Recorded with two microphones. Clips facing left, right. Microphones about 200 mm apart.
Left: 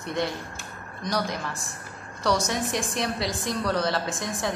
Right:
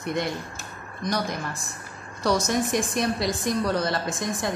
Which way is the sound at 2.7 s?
15° right (ahead or behind).